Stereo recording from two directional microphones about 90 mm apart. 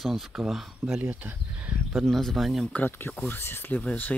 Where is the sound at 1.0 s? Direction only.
20° right (ahead or behind).